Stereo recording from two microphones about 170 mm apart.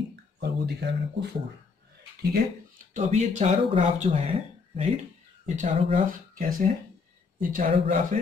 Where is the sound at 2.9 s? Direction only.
40° right (ahead or behind).